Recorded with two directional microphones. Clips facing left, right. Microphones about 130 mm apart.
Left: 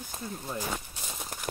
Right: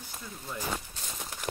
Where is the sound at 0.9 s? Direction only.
10° left (ahead or behind).